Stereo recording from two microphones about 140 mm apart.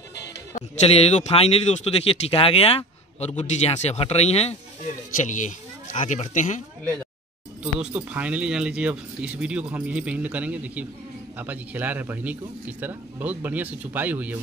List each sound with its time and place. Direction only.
0.8 s speech: 50° left (ahead or behind)
5.2 s speech: 65° left (ahead or behind)
7.6 s speech: 10° right (ahead or behind)